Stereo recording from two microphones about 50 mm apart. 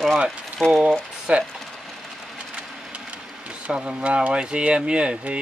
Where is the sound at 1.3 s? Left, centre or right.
Right.